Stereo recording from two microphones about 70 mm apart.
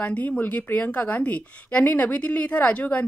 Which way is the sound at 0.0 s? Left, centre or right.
Centre.